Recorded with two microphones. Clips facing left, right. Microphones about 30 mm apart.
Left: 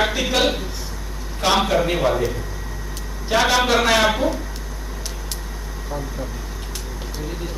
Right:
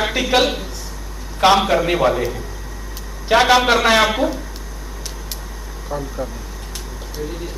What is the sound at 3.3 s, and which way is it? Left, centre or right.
Speech, right.